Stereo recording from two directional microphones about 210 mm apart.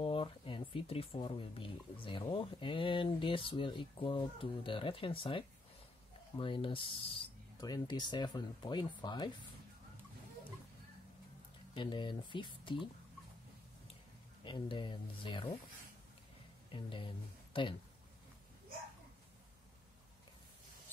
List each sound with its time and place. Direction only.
0.0 s speech: 25° left (ahead or behind)
11.7 s speech: 20° left (ahead or behind)
14.4 s speech: 25° left (ahead or behind)
16.7 s speech: 25° left (ahead or behind)